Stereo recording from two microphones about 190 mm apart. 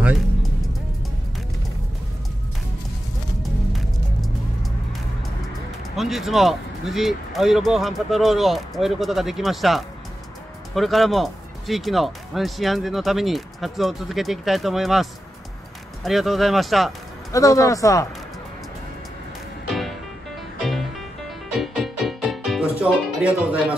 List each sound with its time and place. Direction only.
0.0 s music: 5° right (ahead or behind)
5.9 s speech: centre (ahead or behind)
17.3 s speech: 15° left (ahead or behind)
21.5 s music: centre (ahead or behind)